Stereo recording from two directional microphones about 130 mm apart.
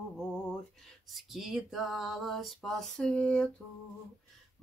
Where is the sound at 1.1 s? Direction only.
Centre (ahead or behind).